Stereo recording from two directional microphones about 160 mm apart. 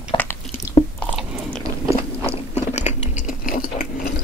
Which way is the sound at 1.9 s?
40° left (ahead or behind).